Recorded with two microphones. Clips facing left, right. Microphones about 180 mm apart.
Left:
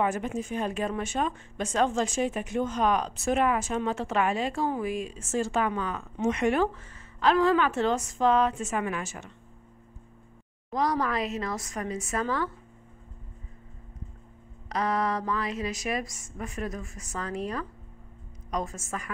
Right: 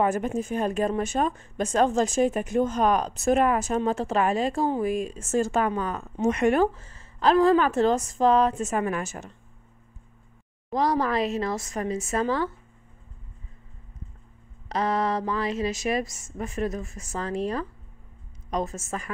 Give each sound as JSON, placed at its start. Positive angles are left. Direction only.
{"t": 0.0, "sound": "a woman's voice", "side_deg": -45}
{"t": 6.7, "sound": "a woman's voice", "side_deg": -35}
{"t": 10.7, "sound": "a woman's voice", "side_deg": -30}
{"t": 14.7, "sound": "a woman's voice", "side_deg": -25}